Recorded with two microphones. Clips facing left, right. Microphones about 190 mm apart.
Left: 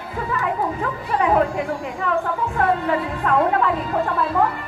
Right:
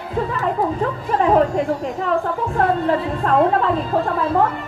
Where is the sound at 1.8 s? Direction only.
40° right (ahead or behind).